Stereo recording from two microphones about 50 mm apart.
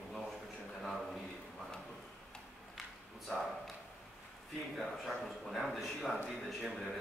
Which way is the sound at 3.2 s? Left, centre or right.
Centre.